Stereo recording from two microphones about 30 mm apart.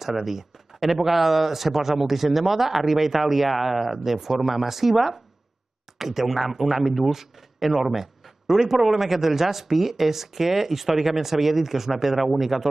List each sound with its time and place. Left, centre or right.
0.0 s speech: centre